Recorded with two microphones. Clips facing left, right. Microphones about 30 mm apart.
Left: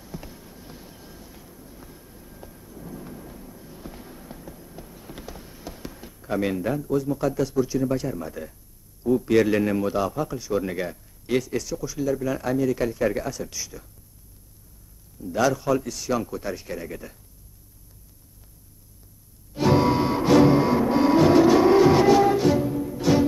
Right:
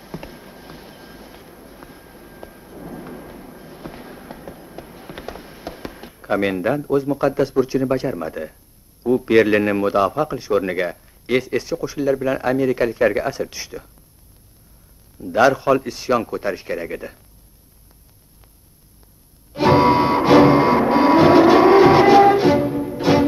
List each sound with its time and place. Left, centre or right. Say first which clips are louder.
0.0 s vehicle: right 5 dB; right
9.0 s a man's voice: right 5 dB; right
15.1 s a man's voice: right 7 dB; right
19.5 s music: right 6 dB; right